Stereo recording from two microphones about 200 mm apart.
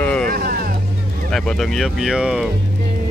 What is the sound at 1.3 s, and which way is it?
Speech, centre (ahead or behind).